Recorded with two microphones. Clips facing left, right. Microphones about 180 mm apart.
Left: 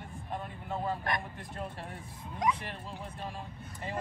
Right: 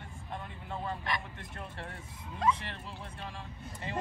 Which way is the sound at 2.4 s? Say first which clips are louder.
Right 1 dB; 15° left (ahead or behind).